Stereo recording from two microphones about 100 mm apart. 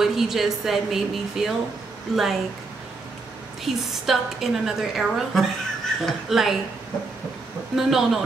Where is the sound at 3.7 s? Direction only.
Centre (ahead or behind).